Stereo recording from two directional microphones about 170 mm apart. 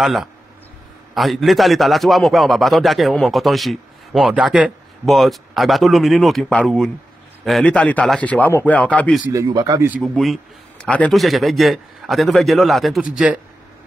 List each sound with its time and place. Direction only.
0.0 s a man's voice: centre (ahead or behind)
9.3 s speech: 20° right (ahead or behind)
10.0 s speech: centre (ahead or behind)